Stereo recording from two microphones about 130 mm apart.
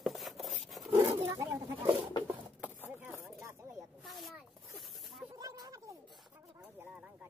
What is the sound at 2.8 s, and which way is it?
Chopping, 15° right (ahead or behind).